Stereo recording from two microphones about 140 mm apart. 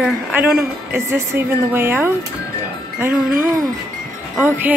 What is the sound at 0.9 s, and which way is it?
A woman's voice, 15° right (ahead or behind).